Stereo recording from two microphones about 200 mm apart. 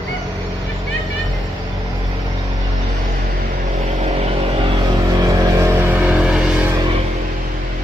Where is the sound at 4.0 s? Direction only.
35° right (ahead or behind); by 6.7 s 5° right (ahead or behind).